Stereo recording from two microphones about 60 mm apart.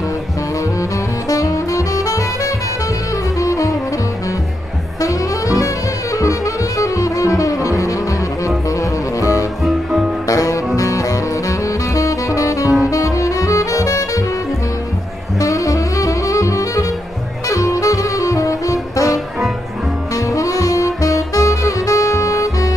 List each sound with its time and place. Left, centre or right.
1.3 s saxophone: left
3.3 s music: left
5.0 s saxophone: left
6.1 s music: left
9.2 s music: left
12.9 s saxophone: left
15.3 s saxophone: left
20.2 s music: left